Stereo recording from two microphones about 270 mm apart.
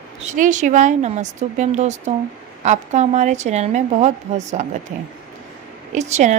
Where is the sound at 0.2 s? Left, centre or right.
Right.